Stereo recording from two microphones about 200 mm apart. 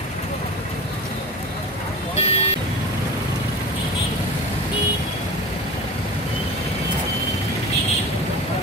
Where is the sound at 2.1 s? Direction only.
30° left (ahead or behind).